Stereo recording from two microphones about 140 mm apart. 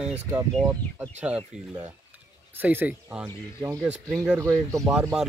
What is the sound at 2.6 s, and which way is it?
Speech, 15° right (ahead or behind).